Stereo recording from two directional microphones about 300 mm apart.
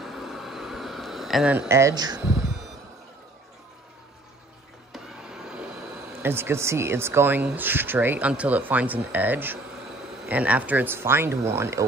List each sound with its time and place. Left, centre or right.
0.0 s a sound: centre
4.9 s vehicle: centre
6.2 s speech: centre